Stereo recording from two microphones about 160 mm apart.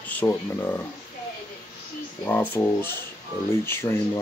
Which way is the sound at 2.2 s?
10° left (ahead or behind).